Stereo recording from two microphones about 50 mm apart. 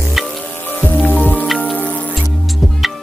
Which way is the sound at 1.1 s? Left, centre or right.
Left.